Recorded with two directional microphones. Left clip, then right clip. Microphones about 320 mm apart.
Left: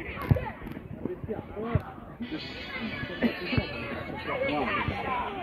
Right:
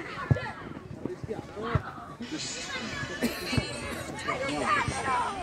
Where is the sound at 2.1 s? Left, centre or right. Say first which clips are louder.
Even; right.